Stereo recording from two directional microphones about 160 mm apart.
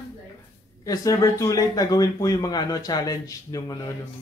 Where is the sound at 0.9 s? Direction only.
20° left (ahead or behind).